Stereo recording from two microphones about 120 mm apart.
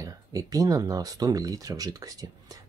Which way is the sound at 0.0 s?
30° right (ahead or behind).